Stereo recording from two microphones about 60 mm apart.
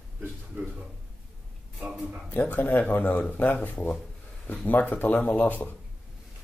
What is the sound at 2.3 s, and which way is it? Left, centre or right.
Speech, left.